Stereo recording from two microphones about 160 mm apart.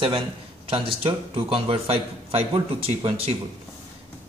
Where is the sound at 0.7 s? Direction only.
35° right (ahead or behind).